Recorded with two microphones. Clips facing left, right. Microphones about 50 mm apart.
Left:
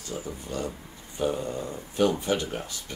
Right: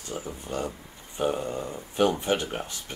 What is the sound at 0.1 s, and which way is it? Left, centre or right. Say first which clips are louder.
Speech: right 1 dB; right.